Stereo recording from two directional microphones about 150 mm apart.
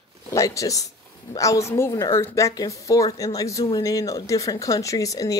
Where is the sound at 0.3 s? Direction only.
20° left (ahead or behind).